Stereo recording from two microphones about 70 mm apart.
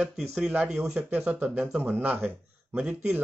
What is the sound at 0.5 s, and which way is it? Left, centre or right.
Speech, centre.